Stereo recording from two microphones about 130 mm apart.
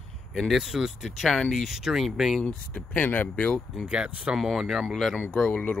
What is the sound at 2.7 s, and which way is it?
Speech, 10° left (ahead or behind).